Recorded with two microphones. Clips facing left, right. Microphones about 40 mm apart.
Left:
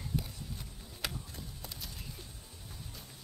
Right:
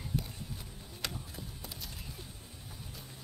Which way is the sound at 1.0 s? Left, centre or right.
Centre.